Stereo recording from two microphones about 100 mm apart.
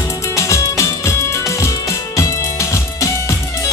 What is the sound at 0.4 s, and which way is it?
Music, 30° left (ahead or behind).